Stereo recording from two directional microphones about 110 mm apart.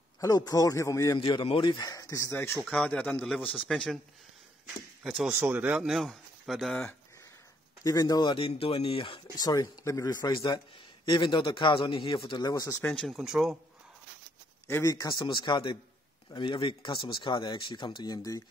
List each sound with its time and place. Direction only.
0.5 s speech: 30° left (ahead or behind)
1.1 s a man's voice: 45° left (ahead or behind)
1.9 s speech: 30° left (ahead or behind)
2.6 s speech: 10° left (ahead or behind)
5.0 s speech: centre (ahead or behind)
5.4 s speech: 15° right (ahead or behind); by 6.8 s centre (ahead or behind)
7.8 s a man's voice: 35° left (ahead or behind); by 9.2 s 55° left (ahead or behind)
9.3 s a man's voice: 35° left (ahead or behind)
12.9 s speech: 5° left (ahead or behind)
14.7 s speech: 30° left (ahead or behind)
15.2 s a man's voice: 45° left (ahead or behind)